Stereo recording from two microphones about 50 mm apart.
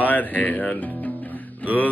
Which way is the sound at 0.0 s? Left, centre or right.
Left.